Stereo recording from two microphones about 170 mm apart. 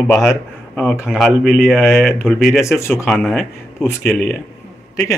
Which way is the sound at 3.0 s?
Centre (ahead or behind).